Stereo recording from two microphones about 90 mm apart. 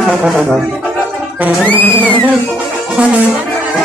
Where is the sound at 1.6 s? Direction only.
20° left (ahead or behind).